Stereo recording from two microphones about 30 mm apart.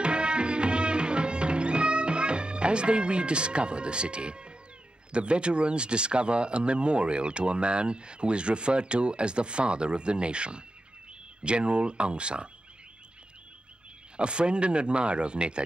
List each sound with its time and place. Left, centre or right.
0.0 s music: right
5.1 s speech: right
14.1 s speech: right